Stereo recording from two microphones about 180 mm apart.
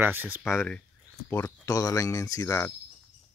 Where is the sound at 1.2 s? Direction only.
10° left (ahead or behind).